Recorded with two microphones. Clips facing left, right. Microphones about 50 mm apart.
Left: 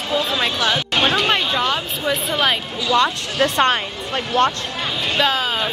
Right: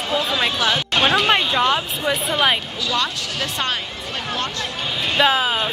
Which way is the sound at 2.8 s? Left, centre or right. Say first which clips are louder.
Left 10 dB; left.